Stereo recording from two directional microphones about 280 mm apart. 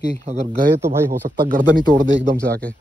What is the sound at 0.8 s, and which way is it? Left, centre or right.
Speech, centre.